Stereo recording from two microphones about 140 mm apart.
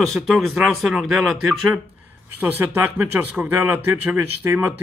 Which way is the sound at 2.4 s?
10° right (ahead or behind).